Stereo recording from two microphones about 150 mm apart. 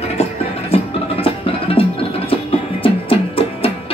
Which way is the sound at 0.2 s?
40° left (ahead or behind).